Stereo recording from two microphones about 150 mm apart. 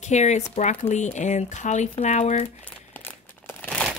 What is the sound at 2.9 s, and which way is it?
Crumpling, 15° left (ahead or behind).